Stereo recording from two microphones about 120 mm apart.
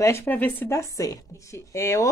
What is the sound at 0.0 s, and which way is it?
A woman's voice, 20° left (ahead or behind).